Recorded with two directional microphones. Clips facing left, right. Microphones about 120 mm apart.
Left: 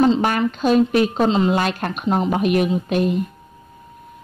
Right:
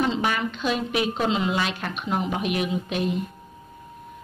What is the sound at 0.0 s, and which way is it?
A woman's voice, 40° left (ahead or behind).